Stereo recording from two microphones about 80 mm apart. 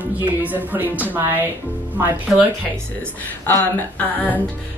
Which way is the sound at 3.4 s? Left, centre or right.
Left.